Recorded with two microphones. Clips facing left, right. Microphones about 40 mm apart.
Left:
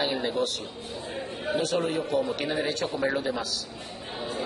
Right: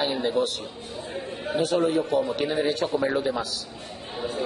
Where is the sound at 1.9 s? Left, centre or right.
Centre.